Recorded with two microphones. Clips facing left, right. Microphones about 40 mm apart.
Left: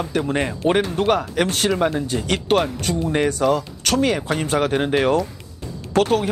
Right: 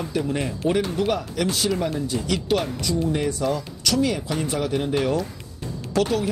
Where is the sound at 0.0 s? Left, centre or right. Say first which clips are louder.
Left 4 dB; left.